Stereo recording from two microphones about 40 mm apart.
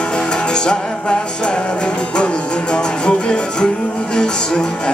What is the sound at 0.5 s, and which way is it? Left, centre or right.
Music, left.